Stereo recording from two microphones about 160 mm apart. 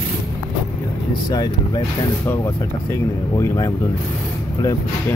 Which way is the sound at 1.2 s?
25° left (ahead or behind).